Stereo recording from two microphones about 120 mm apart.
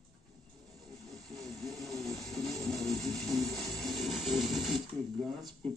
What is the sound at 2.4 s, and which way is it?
Music, centre (ahead or behind).